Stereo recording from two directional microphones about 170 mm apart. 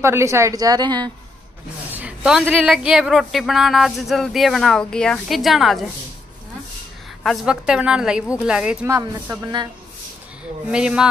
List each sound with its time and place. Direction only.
0.0 s a woman's voice: 15° right (ahead or behind)
1.9 s speech: 10° right (ahead or behind)
7.2 s speech: 5° right (ahead or behind)
8.8 s a woman's voice: 15° right (ahead or behind)
10.7 s speech: 5° right (ahead or behind)